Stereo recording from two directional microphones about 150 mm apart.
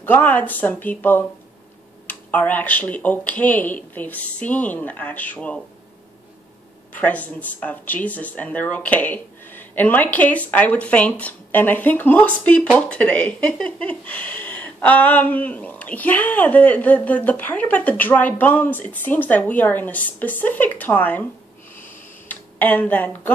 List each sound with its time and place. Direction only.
0.0 s speech: 10° left (ahead or behind)
6.9 s speech: 10° left (ahead or behind)
21.8 s a sound: 10° left (ahead or behind)